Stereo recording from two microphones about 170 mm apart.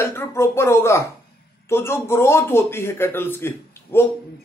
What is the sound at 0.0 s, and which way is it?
Speech, 15° left (ahead or behind).